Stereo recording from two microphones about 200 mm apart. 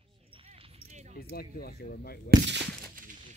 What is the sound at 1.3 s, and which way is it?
Speech, 50° left (ahead or behind).